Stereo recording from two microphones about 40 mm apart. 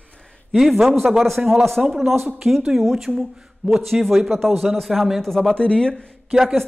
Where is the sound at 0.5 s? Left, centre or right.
Centre.